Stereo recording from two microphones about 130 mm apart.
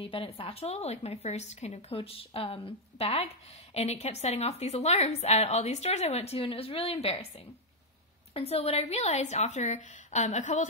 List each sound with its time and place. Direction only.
0.0 s a woman's voice: 45° left (ahead or behind); by 10.7 s 65° left (ahead or behind)